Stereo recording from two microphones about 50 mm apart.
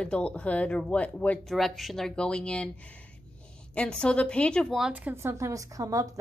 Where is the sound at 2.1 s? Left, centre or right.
Centre.